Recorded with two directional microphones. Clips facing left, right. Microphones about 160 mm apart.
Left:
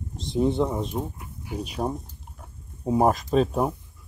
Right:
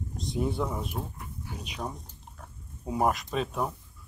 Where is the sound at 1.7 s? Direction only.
30° left (ahead or behind).